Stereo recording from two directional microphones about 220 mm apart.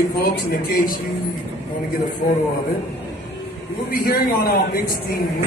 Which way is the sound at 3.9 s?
40° left (ahead or behind).